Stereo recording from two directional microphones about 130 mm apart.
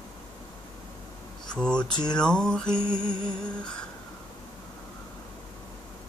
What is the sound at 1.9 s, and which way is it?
Music, 35° left (ahead or behind).